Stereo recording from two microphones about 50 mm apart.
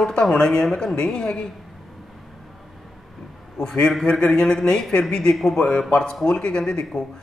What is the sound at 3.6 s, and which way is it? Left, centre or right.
Speech, centre.